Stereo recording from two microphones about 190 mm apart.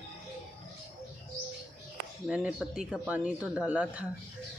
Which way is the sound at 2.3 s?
5° right (ahead or behind).